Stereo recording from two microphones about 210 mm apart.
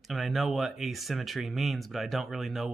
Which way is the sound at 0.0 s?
Centre (ahead or behind).